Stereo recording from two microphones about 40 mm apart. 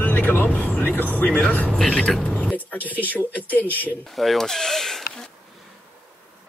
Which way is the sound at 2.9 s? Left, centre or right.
Left.